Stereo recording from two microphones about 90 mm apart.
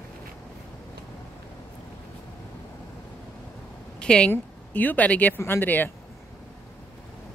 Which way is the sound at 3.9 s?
10° left (ahead or behind).